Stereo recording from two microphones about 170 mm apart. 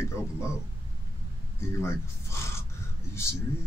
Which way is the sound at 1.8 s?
15° left (ahead or behind).